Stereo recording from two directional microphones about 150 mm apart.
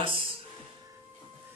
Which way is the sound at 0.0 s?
40° right (ahead or behind).